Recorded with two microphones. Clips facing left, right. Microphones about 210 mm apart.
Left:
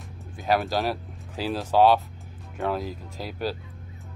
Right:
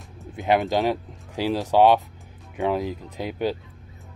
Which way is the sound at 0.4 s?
15° right (ahead or behind).